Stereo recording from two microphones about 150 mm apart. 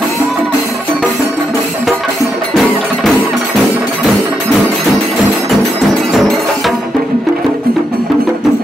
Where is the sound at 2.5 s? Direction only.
Centre (ahead or behind).